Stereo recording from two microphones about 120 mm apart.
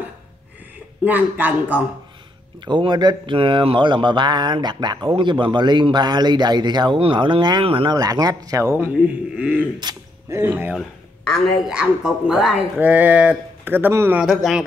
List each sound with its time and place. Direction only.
1.0 s speech: 15° right (ahead or behind)
2.6 s a man's voice: 40° right (ahead or behind); by 10.7 s 20° right (ahead or behind)
10.7 s a woman's voice: centre (ahead or behind)
12.7 s speech: 15° right (ahead or behind)
14.2 s a woman's voice: centre (ahead or behind)